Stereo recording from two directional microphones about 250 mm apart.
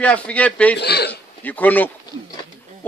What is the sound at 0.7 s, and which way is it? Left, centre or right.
Speech, left.